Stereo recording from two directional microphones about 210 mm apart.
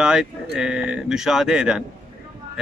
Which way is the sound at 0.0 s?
5° right (ahead or behind).